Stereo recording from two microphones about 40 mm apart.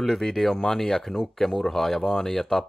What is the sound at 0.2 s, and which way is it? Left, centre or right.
Speech, centre.